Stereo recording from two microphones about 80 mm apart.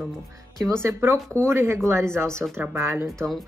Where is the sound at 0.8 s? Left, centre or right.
Right.